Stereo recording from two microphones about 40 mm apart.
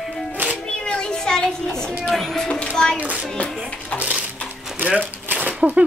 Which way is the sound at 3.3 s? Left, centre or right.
Left.